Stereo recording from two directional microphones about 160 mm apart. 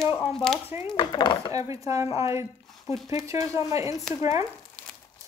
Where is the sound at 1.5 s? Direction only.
20° right (ahead or behind).